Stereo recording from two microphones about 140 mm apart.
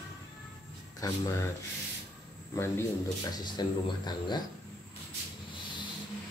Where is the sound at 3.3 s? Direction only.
30° left (ahead or behind).